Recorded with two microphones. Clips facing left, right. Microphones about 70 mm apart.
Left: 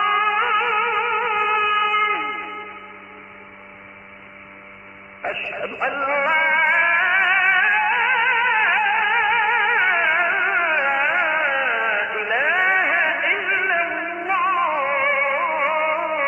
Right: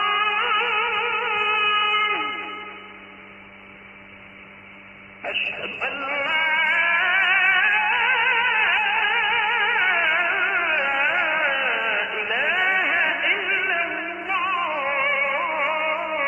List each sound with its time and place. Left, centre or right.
0.0 s music: centre
5.7 s music: left
6.7 s music: centre
8.9 s music: centre
11.9 s carnatic music: centre
12.4 s music: centre